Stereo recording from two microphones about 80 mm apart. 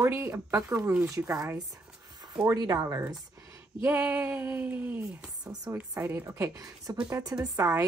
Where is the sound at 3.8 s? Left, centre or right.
Centre.